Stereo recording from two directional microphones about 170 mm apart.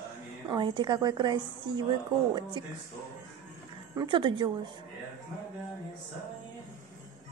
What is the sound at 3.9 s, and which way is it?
Speech, 25° right (ahead or behind).